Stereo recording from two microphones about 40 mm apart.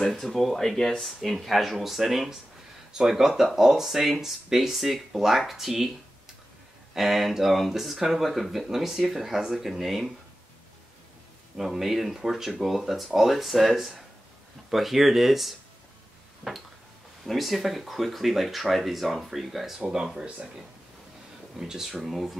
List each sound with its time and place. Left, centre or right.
0.0 s speech: centre
7.0 s speech: centre
11.5 s speech: centre
17.2 s speech: centre
20.2 s speech: right
21.5 s speech: centre